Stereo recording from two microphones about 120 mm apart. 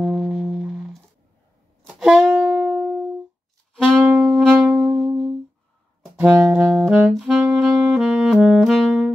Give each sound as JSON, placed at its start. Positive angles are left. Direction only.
{"t": 0.0, "sound": "music", "side_deg": 0}
{"t": 2.0, "sound": "saxophone", "side_deg": -5}
{"t": 4.0, "sound": "saxophone", "side_deg": -10}
{"t": 4.7, "sound": "music", "side_deg": 0}
{"t": 6.5, "sound": "saxophone", "side_deg": -10}